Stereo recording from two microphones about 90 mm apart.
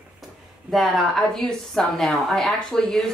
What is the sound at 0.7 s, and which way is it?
Speech, centre (ahead or behind).